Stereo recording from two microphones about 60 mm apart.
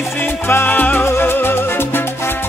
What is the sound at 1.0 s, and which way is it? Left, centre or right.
Music, left.